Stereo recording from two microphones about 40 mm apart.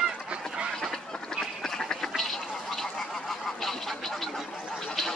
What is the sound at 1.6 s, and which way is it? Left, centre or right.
Duck, centre.